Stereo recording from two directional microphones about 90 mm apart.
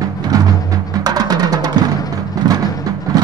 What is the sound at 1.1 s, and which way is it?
Music, 45° right (ahead or behind).